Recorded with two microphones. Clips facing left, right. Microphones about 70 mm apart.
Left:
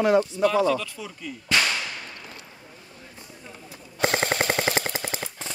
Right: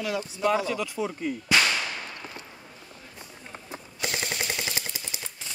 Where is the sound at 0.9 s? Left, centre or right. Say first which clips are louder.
Right 7 dB; right.